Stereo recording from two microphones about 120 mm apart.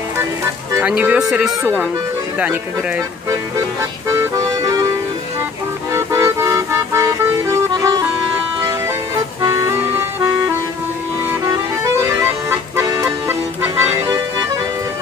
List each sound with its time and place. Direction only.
0.7 s speech: 10° right (ahead or behind)
4.1 s music: 25° right (ahead or behind)
5.9 s music: 20° right (ahead or behind)
9.4 s music: 25° right (ahead or behind)
11.4 s accordion: 25° right (ahead or behind)
12.8 s music: 25° right (ahead or behind)